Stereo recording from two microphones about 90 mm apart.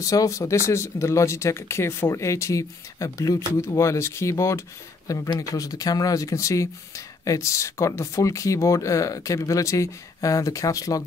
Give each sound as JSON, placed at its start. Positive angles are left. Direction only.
{"t": 0.0, "sound": "speech", "side_deg": 40}